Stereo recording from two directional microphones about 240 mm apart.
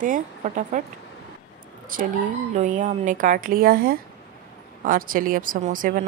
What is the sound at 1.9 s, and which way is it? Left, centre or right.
Speech, right.